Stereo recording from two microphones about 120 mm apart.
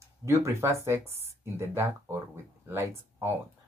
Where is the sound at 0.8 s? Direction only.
20° right (ahead or behind).